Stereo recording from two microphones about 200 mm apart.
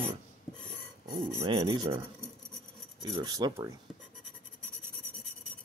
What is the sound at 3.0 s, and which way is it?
Speech, 20° right (ahead or behind).